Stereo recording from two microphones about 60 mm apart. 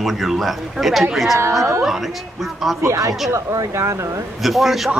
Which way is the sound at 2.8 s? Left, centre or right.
Right.